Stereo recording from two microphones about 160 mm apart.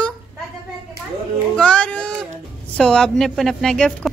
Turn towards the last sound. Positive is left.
turn(degrees=0)  # may be behind; listen again after turning